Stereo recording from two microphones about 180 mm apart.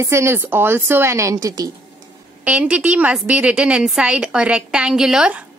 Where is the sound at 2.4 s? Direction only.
5° right (ahead or behind).